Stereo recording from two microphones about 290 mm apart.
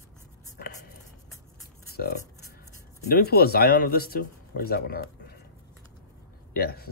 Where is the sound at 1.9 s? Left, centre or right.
Left.